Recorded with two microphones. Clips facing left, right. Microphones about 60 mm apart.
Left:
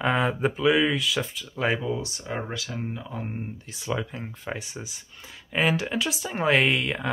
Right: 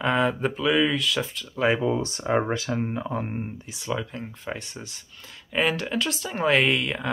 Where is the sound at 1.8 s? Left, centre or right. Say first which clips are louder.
Right 5 dB; right.